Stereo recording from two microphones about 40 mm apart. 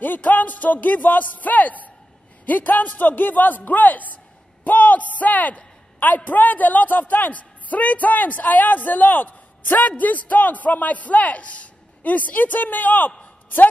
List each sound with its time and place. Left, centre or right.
0.0 s a man's voice: left